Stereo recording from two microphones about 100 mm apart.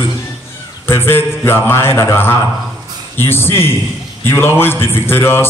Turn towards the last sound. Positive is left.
turn(degrees=25)  # may be behind; listen again after turning